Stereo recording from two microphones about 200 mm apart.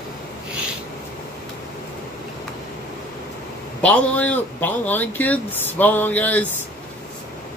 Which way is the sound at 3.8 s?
5° left (ahead or behind).